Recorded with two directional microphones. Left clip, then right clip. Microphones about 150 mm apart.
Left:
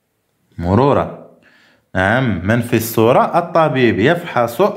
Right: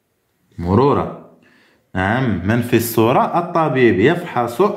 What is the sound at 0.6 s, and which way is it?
A man's voice, 30° left (ahead or behind).